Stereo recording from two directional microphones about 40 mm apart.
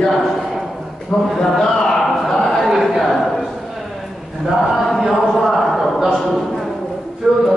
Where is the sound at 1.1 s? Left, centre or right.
Centre.